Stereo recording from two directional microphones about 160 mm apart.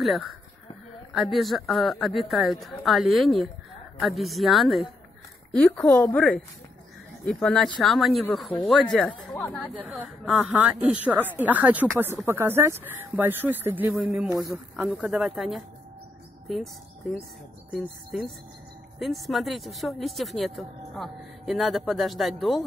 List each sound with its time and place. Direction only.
0.0 s a woman's voice: centre (ahead or behind)
9.3 s a woman's voice: 15° left (ahead or behind)
9.8 s speech: 5° right (ahead or behind)